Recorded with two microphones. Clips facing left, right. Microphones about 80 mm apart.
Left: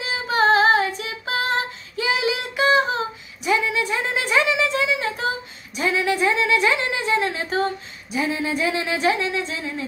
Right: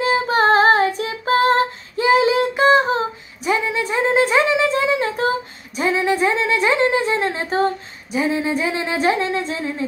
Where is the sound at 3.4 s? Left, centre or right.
Right.